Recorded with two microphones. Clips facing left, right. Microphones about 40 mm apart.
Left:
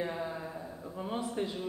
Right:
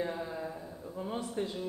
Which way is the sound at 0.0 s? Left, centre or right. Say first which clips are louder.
Even; centre.